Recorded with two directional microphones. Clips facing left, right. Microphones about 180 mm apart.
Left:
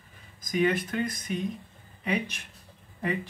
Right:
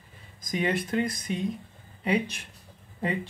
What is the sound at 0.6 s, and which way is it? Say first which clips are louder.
Speech: left 1 dB; 30° right (ahead or behind).